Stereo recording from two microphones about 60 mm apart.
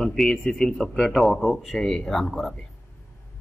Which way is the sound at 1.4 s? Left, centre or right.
Centre.